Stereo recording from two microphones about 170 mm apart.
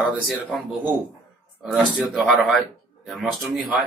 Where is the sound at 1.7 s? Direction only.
Centre (ahead or behind).